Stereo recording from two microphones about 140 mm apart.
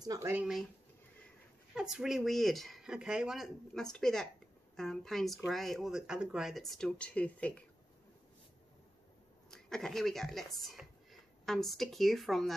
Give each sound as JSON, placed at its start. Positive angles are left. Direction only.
{"t": 0.0, "sound": "speech", "side_deg": -25}
{"t": 0.3, "sound": "speech", "side_deg": -10}
{"t": 1.8, "sound": "speech", "side_deg": -5}
{"t": 9.5, "sound": "speech", "side_deg": 5}